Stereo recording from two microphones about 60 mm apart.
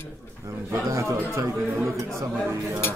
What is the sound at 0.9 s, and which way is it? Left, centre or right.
Speech, right.